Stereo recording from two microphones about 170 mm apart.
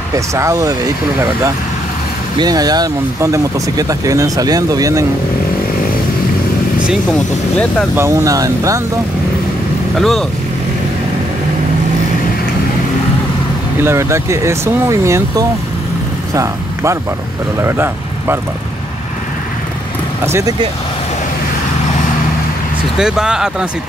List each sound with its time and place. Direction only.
0.1 s speech: 15° right (ahead or behind)
2.3 s speech: 25° right (ahead or behind)
6.9 s speech: 5° left (ahead or behind)
7.9 s speech: 15° right (ahead or behind)
9.9 s speech: centre (ahead or behind)
13.8 s speech: 15° right (ahead or behind)
20.2 s speech: 15° right (ahead or behind)
22.9 s speech: 5° right (ahead or behind)